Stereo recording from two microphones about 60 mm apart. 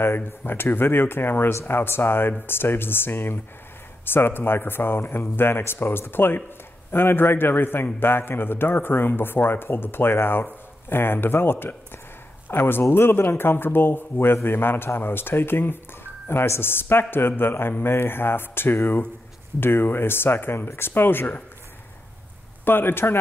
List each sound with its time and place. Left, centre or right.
0.0 s a man's voice: left
22.7 s a man's voice: left